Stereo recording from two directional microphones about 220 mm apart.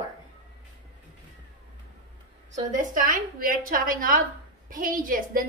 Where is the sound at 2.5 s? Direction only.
35° right (ahead or behind).